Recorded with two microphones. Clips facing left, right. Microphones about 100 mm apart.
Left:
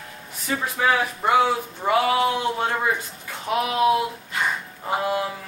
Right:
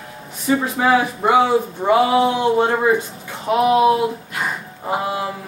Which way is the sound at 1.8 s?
25° right (ahead or behind).